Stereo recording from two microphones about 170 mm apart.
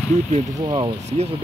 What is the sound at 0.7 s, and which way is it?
Speech, 30° right (ahead or behind).